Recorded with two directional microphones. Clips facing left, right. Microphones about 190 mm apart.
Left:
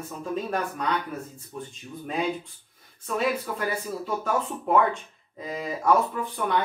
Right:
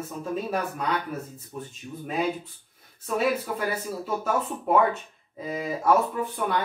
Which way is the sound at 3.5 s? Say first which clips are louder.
Even; 5° right (ahead or behind).